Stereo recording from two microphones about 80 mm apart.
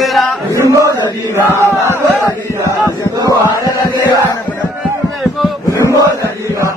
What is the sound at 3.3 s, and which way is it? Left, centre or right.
Chant, left.